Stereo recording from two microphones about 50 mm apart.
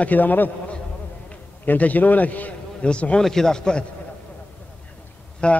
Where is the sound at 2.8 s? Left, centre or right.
Left.